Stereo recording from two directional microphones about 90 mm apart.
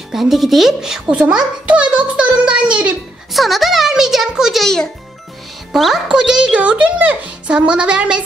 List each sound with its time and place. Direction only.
0.1 s a child's voice: centre (ahead or behind)
3.3 s a child's voice: centre (ahead or behind)